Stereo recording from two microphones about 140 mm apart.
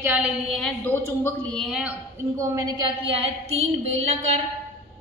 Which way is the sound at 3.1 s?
45° right (ahead or behind).